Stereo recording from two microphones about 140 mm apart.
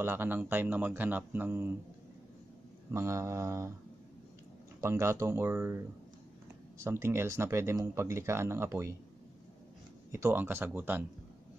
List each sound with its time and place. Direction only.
0.0 s speech: 15° right (ahead or behind)
2.9 s speech: 20° right (ahead or behind)
4.7 s speech: 20° right (ahead or behind)
6.8 s speech: 20° right (ahead or behind)
10.1 s speech: 15° right (ahead or behind)